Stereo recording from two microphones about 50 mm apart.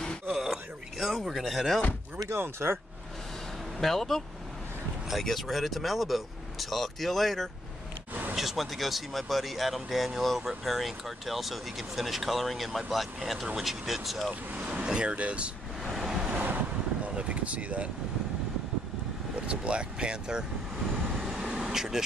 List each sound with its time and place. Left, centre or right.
0.3 s chopping: centre
2.2 s speech: right
3.7 s speech: centre
5.2 s speech: centre
8.1 s a sound: right
8.4 s speech: centre
14.5 s vehicle: right
14.9 s speech: right
15.8 s waves: centre
16.2 s waves: right
17.0 s vehicle: right
19.3 s speech: right
20.9 s vehicle: centre
21.4 s vehicle: centre